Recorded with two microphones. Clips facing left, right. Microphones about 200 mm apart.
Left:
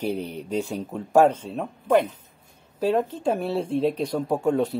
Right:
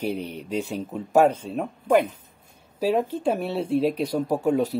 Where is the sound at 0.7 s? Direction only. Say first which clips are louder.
Left 1 dB; 5° right (ahead or behind).